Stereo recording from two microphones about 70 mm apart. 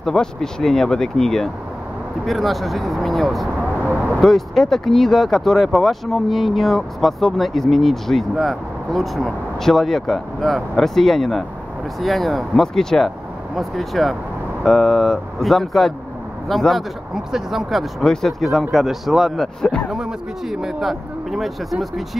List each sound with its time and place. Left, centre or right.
0.0 s speech: centre
3.8 s speech: right
4.2 s speech: centre
19.9 s speech: centre